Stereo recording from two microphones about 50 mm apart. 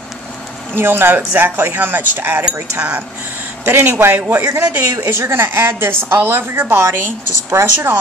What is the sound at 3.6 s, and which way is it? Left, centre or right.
Speech, right.